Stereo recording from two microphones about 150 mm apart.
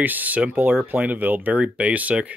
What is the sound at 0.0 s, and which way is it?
Speech, 10° right (ahead or behind).